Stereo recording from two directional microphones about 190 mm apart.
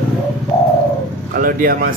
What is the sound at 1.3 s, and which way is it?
Speech, 50° right (ahead or behind).